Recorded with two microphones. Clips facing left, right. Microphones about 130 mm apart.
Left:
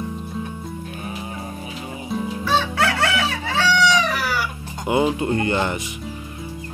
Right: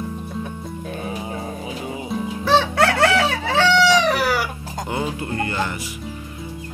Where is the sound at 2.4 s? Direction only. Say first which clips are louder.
Right 5 dB; 60° right (ahead or behind).